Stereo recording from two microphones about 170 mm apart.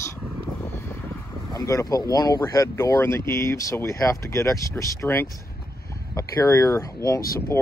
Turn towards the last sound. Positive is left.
turn(degrees=15)  # may be behind; listen again after turning